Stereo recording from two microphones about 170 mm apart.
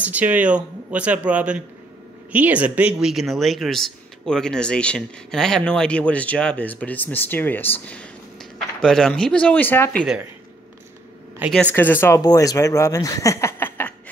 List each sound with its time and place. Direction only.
0.0 s speech: 10° right (ahead or behind); by 10.0 s 10° left (ahead or behind)
11.5 s speech: 10° left (ahead or behind)